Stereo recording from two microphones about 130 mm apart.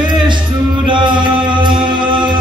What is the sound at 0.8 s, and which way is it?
Chant, 40° right (ahead or behind).